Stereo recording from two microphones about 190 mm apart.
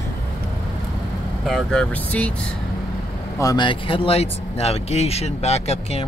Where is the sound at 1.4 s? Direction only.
5° left (ahead or behind).